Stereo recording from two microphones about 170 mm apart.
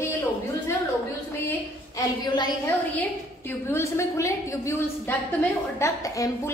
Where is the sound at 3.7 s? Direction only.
15° left (ahead or behind).